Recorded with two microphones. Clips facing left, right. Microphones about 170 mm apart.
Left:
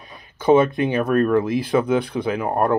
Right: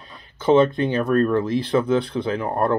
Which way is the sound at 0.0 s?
15° left (ahead or behind).